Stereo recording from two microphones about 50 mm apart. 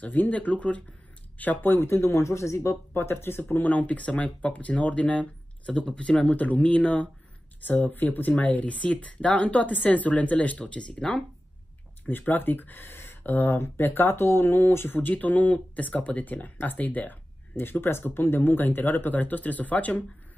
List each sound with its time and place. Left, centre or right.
0.0 s speech: left
1.6 s speech: left
1.9 s speech: left
2.9 s speech: left
3.6 s speech: left
6.3 s speech: left
7.6 s speech: left; by 11.2 s centre
12.1 s speech: left
15.0 s speech: left
17.6 s speech: left